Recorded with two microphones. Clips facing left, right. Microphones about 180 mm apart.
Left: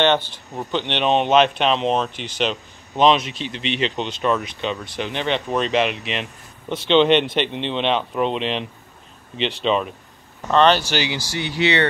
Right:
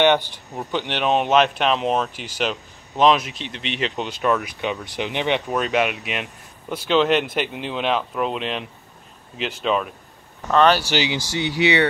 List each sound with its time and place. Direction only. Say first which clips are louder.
0.0 s speech: right 1 dB; 15° right (ahead or behind)
10.9 s speech: right 1 dB; 15° right (ahead or behind)